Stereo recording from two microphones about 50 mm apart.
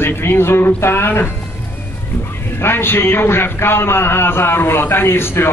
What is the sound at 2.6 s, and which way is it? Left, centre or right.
A man's voice, left.